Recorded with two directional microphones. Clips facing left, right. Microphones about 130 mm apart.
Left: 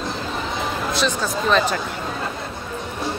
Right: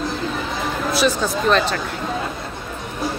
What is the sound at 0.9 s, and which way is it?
Speech, 5° right (ahead or behind).